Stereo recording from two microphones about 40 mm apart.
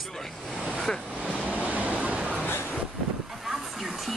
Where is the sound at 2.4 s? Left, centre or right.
Left.